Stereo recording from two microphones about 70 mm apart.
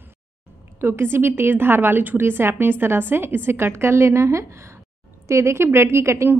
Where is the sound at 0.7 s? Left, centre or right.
Right.